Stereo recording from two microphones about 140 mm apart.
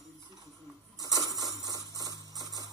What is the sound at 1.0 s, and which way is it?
Music, 25° right (ahead or behind).